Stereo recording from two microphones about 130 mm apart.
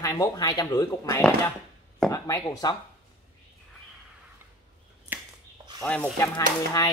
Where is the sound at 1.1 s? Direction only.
15° left (ahead or behind).